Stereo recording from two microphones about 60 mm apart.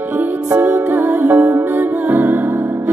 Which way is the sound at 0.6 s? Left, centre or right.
Right.